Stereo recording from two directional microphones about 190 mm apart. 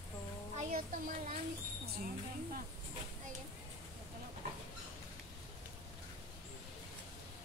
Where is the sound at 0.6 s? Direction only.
40° right (ahead or behind).